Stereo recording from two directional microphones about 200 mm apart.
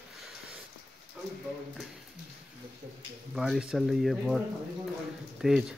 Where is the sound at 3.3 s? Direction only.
Centre (ahead or behind).